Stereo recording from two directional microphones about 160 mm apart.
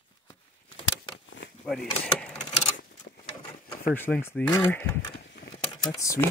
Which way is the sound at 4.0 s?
15° left (ahead or behind).